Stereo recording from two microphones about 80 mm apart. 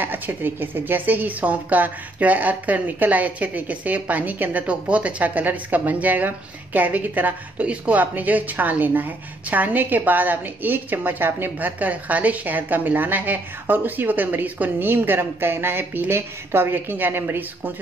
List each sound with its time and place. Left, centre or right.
0.0 s a woman's voice: right